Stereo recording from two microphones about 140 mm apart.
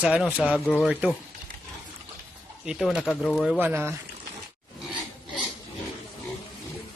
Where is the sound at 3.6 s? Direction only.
15° right (ahead or behind).